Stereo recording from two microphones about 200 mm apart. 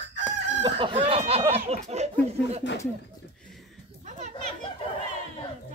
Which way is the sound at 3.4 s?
Centre (ahead or behind).